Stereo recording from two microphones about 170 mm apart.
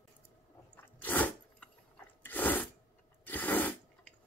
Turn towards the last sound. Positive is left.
turn(degrees=10)  # may be behind; listen again after turning